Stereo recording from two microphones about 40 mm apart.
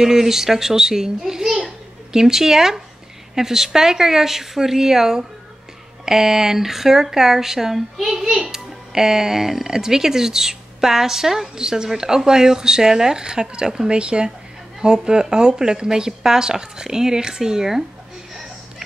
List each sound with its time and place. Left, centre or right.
0.0 s speech: centre